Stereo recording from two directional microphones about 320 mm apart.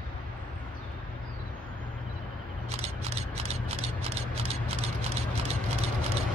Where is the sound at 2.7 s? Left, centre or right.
Centre.